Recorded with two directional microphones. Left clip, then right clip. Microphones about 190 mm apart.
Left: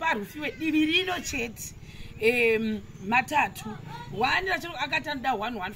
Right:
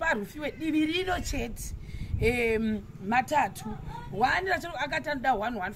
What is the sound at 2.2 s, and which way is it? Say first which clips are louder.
A man's voice: left 4 dB; 20° right (ahead or behind).